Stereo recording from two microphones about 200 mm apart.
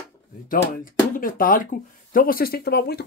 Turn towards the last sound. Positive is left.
turn(degrees=55)  # may be behind; listen again after turning